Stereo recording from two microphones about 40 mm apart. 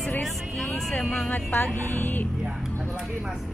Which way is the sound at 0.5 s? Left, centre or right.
Centre.